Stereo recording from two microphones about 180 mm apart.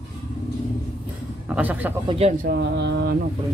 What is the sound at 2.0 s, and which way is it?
Speech, 35° right (ahead or behind).